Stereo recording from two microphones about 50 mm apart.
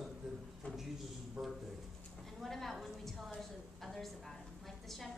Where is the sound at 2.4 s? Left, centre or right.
Centre.